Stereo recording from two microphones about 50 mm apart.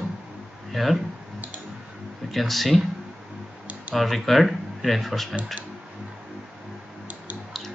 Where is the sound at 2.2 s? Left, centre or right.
Centre.